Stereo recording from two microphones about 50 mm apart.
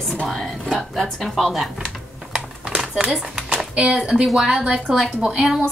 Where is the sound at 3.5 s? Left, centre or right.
Centre.